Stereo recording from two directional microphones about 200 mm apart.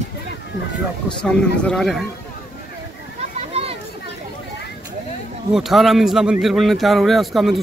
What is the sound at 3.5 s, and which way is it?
Children playing, 30° right (ahead or behind).